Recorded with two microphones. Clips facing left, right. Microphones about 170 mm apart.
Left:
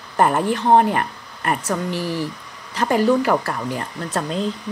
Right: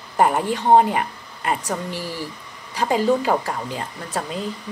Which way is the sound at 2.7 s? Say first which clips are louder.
Left 2 dB; 15° right (ahead or behind).